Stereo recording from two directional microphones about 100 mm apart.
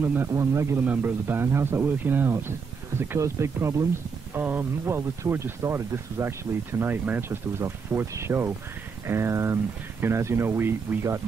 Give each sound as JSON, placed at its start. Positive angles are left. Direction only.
{"t": 0.0, "sound": "speech", "side_deg": -20}